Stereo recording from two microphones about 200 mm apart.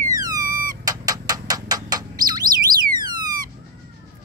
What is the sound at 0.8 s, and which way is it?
Bird, 20° right (ahead or behind).